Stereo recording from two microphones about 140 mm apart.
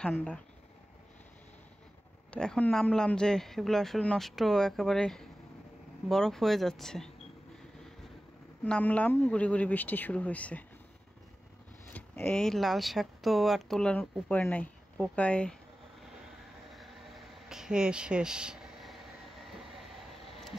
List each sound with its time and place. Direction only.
0.0 s speech: 10° left (ahead or behind)
2.3 s speech: 5° left (ahead or behind)
8.6 s speech: 10° left (ahead or behind)
11.9 s speech: 10° left (ahead or behind)
16.6 s a sound: centre (ahead or behind)